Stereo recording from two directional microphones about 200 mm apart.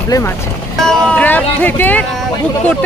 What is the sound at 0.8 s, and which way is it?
Speech, 5° left (ahead or behind).